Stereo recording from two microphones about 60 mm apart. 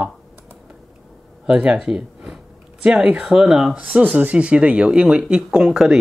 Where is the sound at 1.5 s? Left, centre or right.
Right.